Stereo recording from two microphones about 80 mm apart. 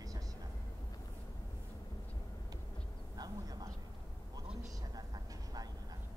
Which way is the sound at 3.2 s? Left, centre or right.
Right.